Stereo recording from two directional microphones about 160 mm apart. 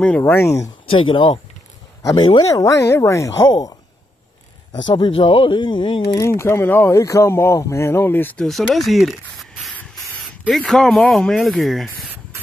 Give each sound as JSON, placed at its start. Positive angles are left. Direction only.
{"t": 0.2, "sound": "speech", "side_deg": 15}
{"t": 0.6, "sound": "speech", "side_deg": 35}
{"t": 4.8, "sound": "speech", "side_deg": 30}
{"t": 6.1, "sound": "speech", "side_deg": 15}